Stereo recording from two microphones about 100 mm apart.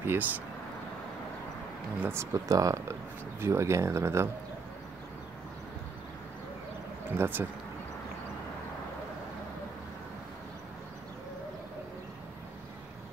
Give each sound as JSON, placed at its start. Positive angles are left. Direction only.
{"t": 0.0, "sound": "speech", "side_deg": -20}
{"t": 2.0, "sound": "speech", "side_deg": -25}
{"t": 7.1, "sound": "speech", "side_deg": -20}